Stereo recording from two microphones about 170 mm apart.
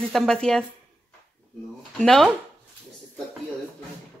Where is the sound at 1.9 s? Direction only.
Centre (ahead or behind).